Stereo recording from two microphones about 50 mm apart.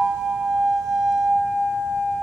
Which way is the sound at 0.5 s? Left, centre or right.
Centre.